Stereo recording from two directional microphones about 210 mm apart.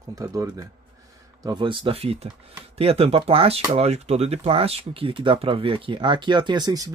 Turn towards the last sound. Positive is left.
turn(degrees=-20)  # may be behind; listen again after turning